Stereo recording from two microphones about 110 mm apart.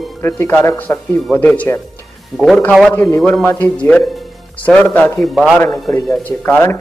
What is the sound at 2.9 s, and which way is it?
Speech, 25° left (ahead or behind).